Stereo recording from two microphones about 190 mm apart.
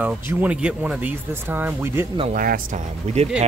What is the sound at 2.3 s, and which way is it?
Speech, 45° right (ahead or behind).